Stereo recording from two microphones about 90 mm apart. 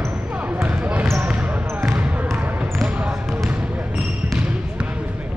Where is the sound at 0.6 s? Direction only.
30° right (ahead or behind).